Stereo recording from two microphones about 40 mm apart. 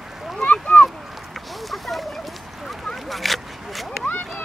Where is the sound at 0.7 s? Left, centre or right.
Left.